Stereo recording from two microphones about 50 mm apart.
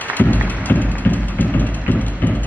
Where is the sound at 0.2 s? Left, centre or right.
Left.